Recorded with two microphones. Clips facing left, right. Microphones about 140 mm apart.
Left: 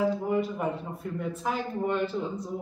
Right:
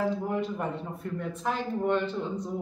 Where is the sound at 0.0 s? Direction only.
5° left (ahead or behind).